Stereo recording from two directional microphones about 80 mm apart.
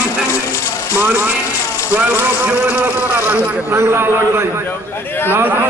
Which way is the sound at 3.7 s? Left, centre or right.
Right.